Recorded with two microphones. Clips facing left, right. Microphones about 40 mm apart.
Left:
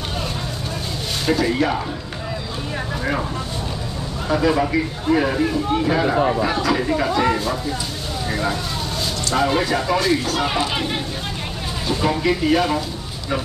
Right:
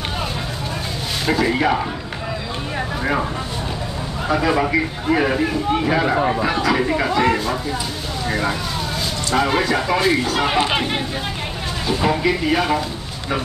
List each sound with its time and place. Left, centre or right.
1.2 s speech: centre
1.5 s speech: right
3.0 s speech: centre
4.3 s speech: centre
9.9 s speech: centre
11.9 s speech: centre